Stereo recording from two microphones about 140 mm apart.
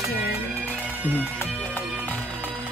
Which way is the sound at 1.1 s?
15° left (ahead or behind).